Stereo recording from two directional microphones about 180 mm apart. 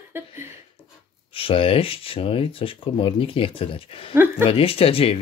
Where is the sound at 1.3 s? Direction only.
30° left (ahead or behind).